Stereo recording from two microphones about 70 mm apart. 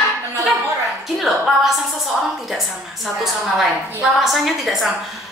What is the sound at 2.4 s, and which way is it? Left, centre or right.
A woman's voice, centre.